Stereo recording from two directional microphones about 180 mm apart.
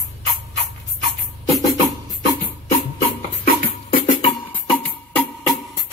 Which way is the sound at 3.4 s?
50° left (ahead or behind).